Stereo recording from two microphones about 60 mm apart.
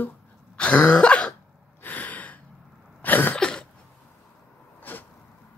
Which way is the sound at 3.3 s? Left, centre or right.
Centre.